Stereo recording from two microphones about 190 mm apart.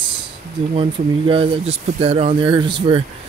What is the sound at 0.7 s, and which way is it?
Speech, 30° right (ahead or behind).